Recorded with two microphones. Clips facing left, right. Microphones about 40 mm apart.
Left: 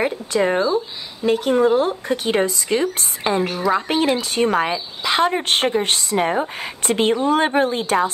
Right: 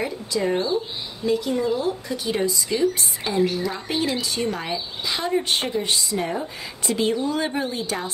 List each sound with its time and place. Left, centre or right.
0.0 s speech: left